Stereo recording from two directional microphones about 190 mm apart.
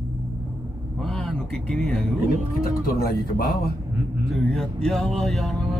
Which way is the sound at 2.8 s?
50° left (ahead or behind).